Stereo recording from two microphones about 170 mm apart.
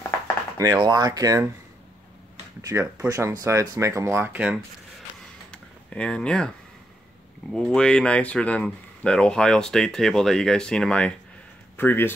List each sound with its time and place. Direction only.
0.6 s speech: 20° right (ahead or behind)
2.7 s speech: 15° right (ahead or behind)
5.5 s a sound: 5° left (ahead or behind)
7.5 s speech: 5° left (ahead or behind)